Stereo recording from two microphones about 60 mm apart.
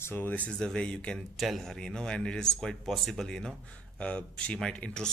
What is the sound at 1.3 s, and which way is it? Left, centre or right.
Speech, centre.